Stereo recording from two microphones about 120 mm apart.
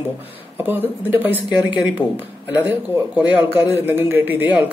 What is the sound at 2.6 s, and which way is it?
A man's voice, 15° right (ahead or behind).